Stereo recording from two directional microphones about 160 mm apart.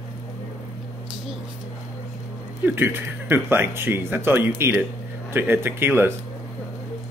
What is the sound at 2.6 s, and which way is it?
Speech, 15° right (ahead or behind).